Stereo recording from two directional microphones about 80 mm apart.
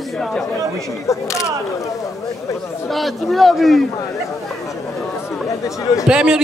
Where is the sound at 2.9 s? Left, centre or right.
Centre.